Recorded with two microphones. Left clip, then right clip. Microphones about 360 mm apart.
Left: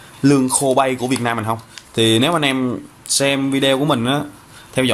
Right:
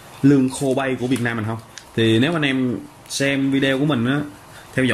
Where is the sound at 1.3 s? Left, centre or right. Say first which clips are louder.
Left 6 dB; left.